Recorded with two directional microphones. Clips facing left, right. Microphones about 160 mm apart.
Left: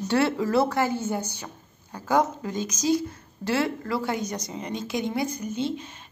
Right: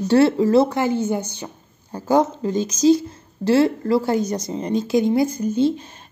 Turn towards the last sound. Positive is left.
turn(degrees=-35)  # may be behind; listen again after turning